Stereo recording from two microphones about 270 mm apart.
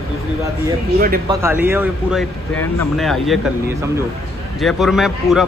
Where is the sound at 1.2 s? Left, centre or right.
Centre.